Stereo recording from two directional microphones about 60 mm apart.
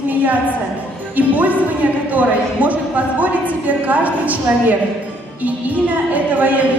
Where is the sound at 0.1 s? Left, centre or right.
Right.